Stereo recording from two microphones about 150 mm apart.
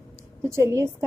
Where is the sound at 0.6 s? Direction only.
15° right (ahead or behind).